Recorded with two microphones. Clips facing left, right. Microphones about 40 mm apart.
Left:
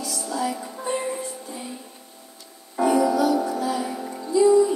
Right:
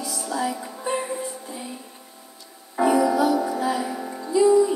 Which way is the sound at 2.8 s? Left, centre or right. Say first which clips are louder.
Right 1 dB; centre.